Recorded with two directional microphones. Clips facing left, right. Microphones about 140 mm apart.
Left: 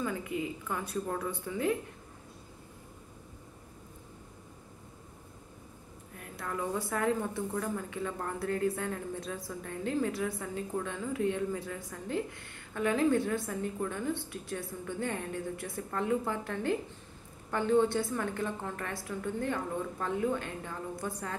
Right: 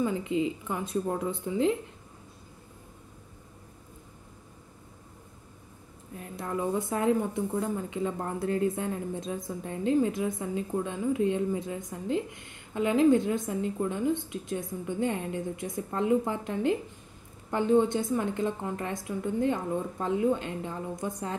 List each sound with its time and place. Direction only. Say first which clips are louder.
0.0 s a woman's voice: right 6 dB; 20° right (ahead or behind)
6.1 s a woman's voice: right 5 dB; 25° right (ahead or behind)